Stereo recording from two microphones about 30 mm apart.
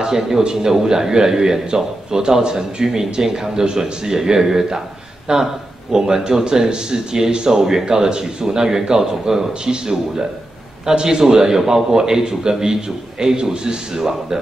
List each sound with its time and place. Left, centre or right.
0.0 s a man's voice: centre
11.0 s a man's voice: right